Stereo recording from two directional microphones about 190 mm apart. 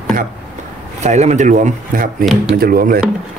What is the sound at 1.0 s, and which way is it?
Speech, 35° right (ahead or behind).